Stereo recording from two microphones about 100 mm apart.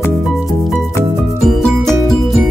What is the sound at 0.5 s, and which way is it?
Music, centre (ahead or behind).